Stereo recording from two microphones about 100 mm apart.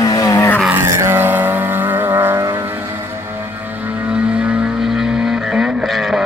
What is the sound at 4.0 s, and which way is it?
Vehicle, 10° right (ahead or behind).